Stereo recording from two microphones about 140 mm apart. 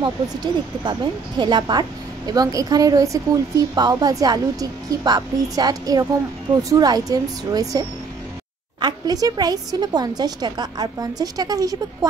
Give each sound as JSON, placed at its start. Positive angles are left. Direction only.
{"t": 0.0, "sound": "a woman's voice", "side_deg": -30}
{"t": 8.8, "sound": "a woman's voice", "side_deg": -30}